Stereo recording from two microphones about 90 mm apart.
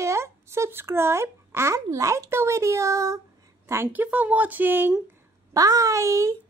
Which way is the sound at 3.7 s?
20° right (ahead or behind).